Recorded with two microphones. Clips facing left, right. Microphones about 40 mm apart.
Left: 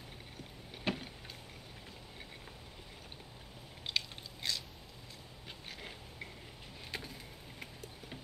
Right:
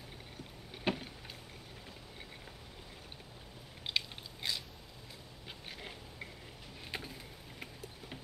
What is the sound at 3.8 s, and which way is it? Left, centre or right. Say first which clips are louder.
Biting: right 1 dB; centre.